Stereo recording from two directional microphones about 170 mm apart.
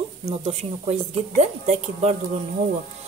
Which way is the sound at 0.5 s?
35° right (ahead or behind).